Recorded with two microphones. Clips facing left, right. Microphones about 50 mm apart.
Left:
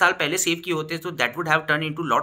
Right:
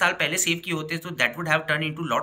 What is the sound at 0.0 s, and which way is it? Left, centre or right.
Speech, centre.